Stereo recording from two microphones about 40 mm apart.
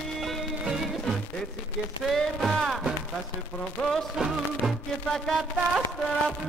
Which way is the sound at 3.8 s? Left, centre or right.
Left.